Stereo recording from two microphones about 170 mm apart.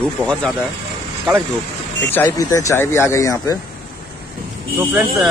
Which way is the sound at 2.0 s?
10° left (ahead or behind).